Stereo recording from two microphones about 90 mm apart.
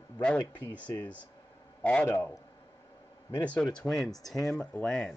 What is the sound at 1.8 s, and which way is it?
Speech, 15° left (ahead or behind).